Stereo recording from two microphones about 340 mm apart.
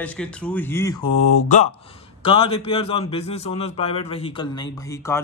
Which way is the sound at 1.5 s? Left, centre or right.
Centre.